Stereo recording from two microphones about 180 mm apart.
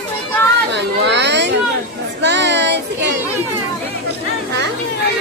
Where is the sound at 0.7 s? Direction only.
75° right (ahead or behind).